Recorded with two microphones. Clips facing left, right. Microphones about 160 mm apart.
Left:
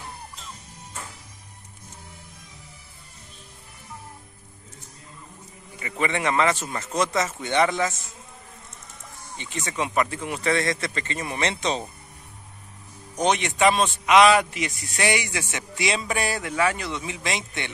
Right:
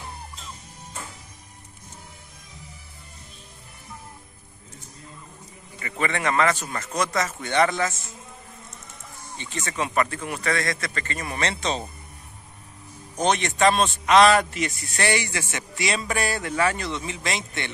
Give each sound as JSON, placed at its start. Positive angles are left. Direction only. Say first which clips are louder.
{"t": 5.8, "sound": "a man's voice", "louder": "left 1 dB", "side_deg": 15}
{"t": 9.4, "sound": "speech", "louder": "even", "side_deg": 15}
{"t": 13.2, "sound": "a man's voice", "louder": "even", "side_deg": 15}